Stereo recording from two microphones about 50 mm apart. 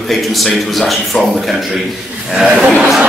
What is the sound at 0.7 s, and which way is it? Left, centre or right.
Speech, centre.